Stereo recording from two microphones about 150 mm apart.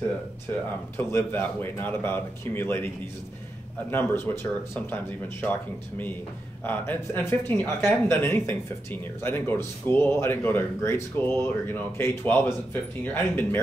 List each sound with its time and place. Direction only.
0.9 s speech: 15° left (ahead or behind)
3.9 s speech: 15° left (ahead or behind)